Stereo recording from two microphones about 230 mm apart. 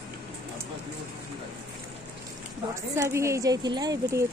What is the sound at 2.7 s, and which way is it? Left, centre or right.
Speech, centre.